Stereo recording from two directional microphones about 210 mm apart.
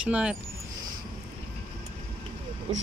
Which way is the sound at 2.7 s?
30° right (ahead or behind).